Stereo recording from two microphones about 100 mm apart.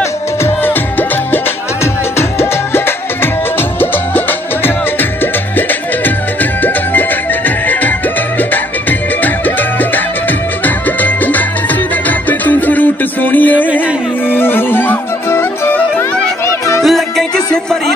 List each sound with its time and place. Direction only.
3.8 s music: 20° left (ahead or behind)
6.6 s music: 20° left (ahead or behind)
10.6 s music: 15° left (ahead or behind)